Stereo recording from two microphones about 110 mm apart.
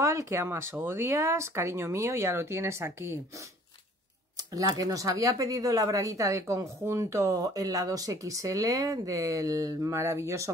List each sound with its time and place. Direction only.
0.0 s speech: 25° right (ahead or behind)
4.4 s speech: 35° right (ahead or behind)